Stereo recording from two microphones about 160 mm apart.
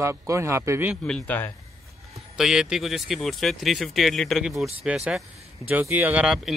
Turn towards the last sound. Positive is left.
turn(degrees=-5)  # may be behind; listen again after turning